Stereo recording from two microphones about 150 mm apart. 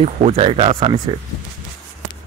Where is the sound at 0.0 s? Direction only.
40° right (ahead or behind).